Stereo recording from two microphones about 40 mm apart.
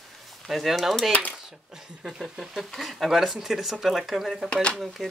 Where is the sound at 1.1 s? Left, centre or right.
Left.